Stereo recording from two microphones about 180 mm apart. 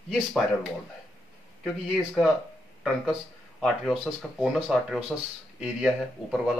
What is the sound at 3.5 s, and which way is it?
A man's voice, centre (ahead or behind).